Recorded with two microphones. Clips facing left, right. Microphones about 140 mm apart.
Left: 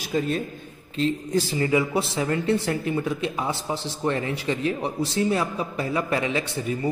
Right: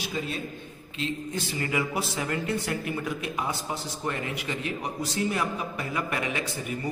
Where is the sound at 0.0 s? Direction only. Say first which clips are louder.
Left 7 dB; 45° left (ahead or behind).